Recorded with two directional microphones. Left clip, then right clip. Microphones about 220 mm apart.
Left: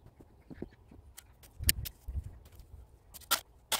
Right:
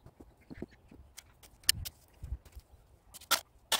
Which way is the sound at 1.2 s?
5° left (ahead or behind).